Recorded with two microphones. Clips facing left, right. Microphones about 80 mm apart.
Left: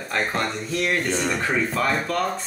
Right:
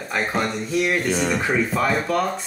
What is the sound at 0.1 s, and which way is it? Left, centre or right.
Speech, centre.